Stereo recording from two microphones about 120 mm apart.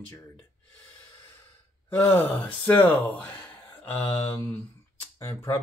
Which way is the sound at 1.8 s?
20° left (ahead or behind).